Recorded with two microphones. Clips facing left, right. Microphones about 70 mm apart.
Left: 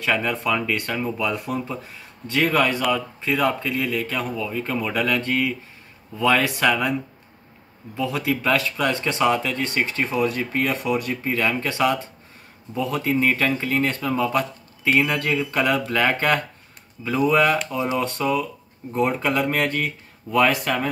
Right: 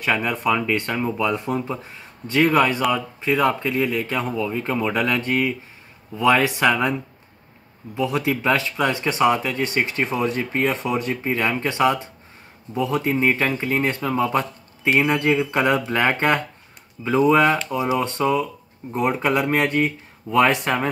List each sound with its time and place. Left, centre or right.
0.0 s speech: centre